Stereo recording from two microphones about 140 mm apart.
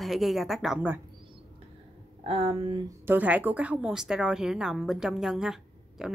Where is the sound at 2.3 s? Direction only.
45° right (ahead or behind).